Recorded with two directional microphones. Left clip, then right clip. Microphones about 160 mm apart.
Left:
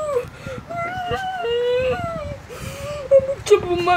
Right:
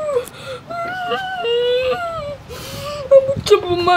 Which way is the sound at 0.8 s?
10° right (ahead or behind).